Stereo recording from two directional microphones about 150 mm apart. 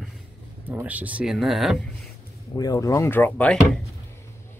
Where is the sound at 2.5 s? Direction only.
25° left (ahead or behind).